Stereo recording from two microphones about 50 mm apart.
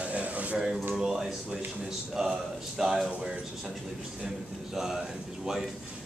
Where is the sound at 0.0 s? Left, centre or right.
Right.